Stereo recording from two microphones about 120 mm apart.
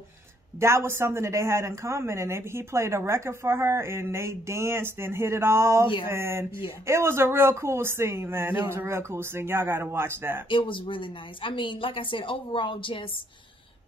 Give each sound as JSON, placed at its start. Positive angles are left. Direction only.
{"t": 0.6, "sound": "speech", "side_deg": -20}
{"t": 10.5, "sound": "speech", "side_deg": 45}